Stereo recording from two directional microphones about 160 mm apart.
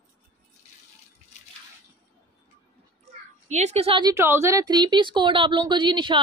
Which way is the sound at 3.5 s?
45° right (ahead or behind).